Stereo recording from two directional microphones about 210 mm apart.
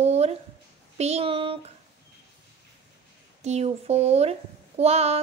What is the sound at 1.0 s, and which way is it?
Speech, 30° right (ahead or behind).